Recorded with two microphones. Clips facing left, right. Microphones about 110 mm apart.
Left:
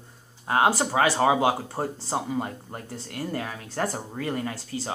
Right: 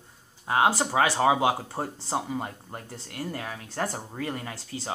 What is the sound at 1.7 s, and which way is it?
Speech, centre (ahead or behind).